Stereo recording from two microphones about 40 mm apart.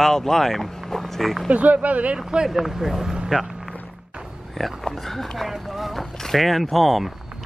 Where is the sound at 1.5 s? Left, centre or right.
Right.